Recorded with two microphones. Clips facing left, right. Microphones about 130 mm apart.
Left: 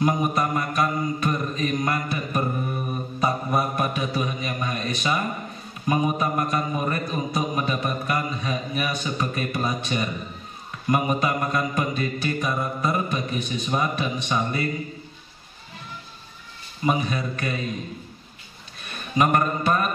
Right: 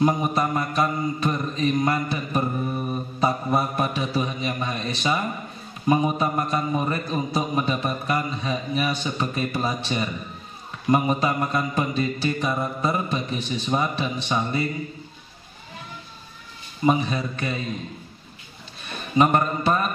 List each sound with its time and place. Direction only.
0.0 s a man's voice: 30° right (ahead or behind)
16.8 s a man's voice: 30° right (ahead or behind)
19.1 s a man's voice: 30° right (ahead or behind)